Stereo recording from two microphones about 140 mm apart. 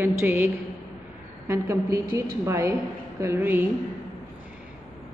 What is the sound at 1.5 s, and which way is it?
A woman's voice, 20° right (ahead or behind).